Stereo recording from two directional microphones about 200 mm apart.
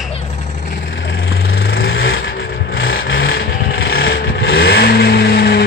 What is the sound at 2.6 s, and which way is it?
Vehicle, 70° left (ahead or behind).